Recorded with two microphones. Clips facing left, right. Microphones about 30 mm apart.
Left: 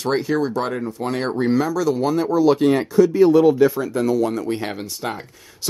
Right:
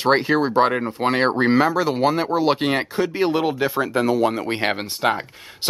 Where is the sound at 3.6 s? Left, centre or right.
Right.